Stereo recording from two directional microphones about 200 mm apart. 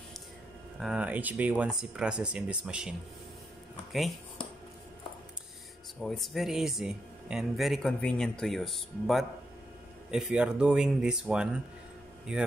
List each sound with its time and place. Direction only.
0.7 s speech: 5° right (ahead or behind)
6.0 s speech: centre (ahead or behind)